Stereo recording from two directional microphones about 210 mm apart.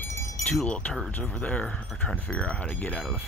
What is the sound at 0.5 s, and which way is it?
Speech, 5° left (ahead or behind).